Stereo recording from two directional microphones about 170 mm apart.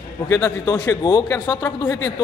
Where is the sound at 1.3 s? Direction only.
10° left (ahead or behind).